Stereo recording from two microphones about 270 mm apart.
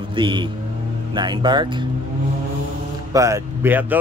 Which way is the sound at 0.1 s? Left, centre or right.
Centre.